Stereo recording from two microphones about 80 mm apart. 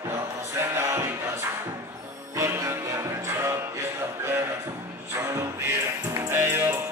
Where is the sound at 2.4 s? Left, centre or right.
Right.